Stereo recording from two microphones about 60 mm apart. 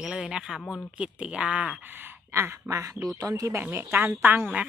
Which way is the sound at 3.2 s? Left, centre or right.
Right.